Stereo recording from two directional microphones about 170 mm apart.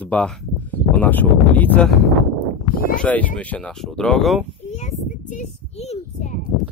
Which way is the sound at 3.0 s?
10° left (ahead or behind).